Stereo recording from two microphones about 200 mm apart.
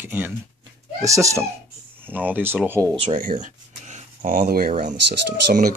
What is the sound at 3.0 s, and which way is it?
Speech, 40° right (ahead or behind).